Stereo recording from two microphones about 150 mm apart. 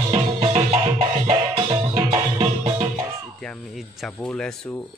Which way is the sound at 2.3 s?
40° right (ahead or behind).